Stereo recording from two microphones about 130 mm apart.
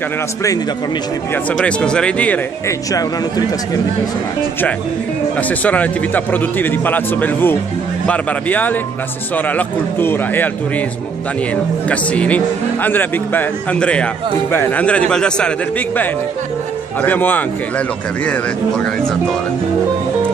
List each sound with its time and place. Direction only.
1.5 s speech: 5° left (ahead or behind)
2.9 s speech: 30° left (ahead or behind)
5.5 s speech: 10° left (ahead or behind)
11.9 s speech: 10° left (ahead or behind)
17.0 s speech: 15° left (ahead or behind)